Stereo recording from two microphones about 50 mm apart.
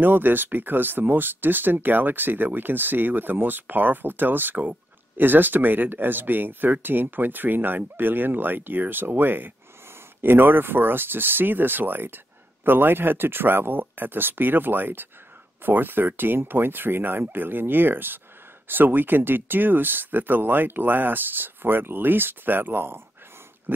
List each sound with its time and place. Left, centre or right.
0.0 s speech: right